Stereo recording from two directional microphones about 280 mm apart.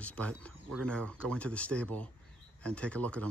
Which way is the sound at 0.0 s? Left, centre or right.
Centre.